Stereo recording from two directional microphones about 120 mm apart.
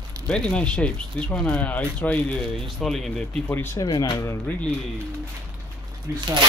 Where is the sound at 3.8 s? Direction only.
40° left (ahead or behind).